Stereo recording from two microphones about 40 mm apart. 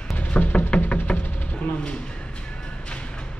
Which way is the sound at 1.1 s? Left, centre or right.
Left.